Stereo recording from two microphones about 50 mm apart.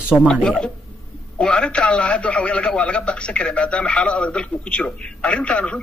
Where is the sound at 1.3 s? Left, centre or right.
Centre.